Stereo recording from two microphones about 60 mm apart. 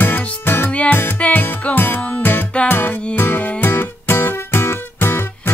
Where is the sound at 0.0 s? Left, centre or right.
Left.